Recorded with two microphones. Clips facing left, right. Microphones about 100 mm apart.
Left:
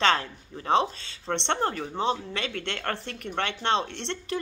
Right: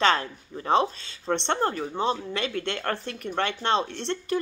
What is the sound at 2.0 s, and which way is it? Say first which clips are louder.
Speech: right 1 dB; 20° left (ahead or behind).